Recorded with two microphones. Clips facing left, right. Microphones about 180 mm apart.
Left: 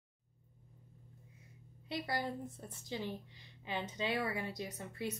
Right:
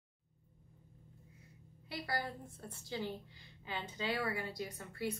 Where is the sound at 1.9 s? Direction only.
20° left (ahead or behind).